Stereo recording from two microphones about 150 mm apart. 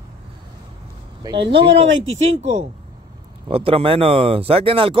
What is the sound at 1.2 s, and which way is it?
Speech, 35° right (ahead or behind).